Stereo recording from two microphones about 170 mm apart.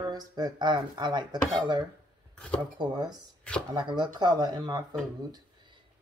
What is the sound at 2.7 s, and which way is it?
Speech, 25° right (ahead or behind).